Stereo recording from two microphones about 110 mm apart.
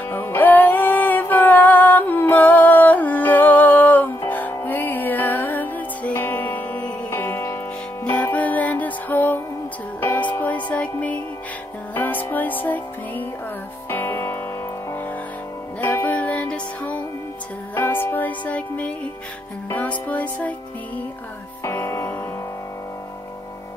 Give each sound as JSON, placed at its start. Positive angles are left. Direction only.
{"t": 0.1, "sound": "music", "side_deg": 20}
{"t": 15.8, "sound": "music", "side_deg": 15}
{"t": 21.6, "sound": "music", "side_deg": 25}